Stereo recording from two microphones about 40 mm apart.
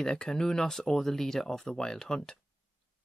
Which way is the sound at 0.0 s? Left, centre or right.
Centre.